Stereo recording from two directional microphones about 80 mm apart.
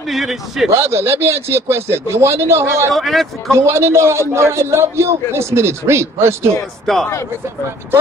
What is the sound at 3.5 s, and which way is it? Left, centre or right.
A man's voice, right.